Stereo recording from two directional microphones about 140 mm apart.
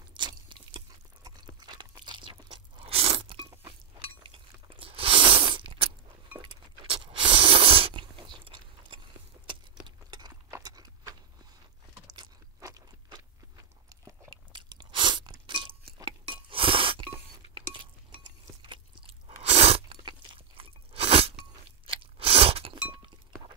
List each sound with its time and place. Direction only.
0.1 s a sound: 35° right (ahead or behind)
4.2 s crunch: 40° right (ahead or behind)
6.4 s a sound: 35° right (ahead or behind)
12.2 s crunch: 25° right (ahead or behind)
13.8 s chewing: 30° right (ahead or behind)
18.6 s biting: 35° right (ahead or behind)
19.4 s crunch: 45° right (ahead or behind)
22.8 s chink: 35° right (ahead or behind)